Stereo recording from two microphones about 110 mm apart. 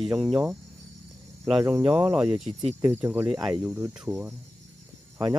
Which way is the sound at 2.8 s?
20° right (ahead or behind).